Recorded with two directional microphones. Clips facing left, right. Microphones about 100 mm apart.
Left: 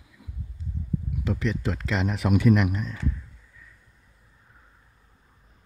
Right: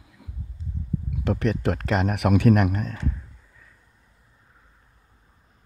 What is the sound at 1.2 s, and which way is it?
Speech, 55° right (ahead or behind).